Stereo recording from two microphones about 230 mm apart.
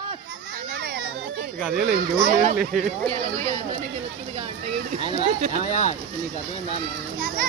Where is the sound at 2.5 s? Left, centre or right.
Centre.